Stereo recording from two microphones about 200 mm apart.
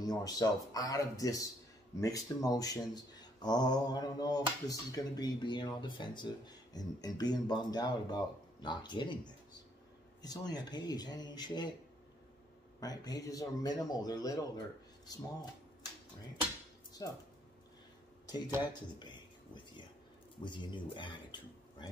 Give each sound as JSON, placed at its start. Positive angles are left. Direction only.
{"t": 0.0, "sound": "speech", "side_deg": 20}
{"t": 12.8, "sound": "speech", "side_deg": 20}
{"t": 18.6, "sound": "a man's voice", "side_deg": 20}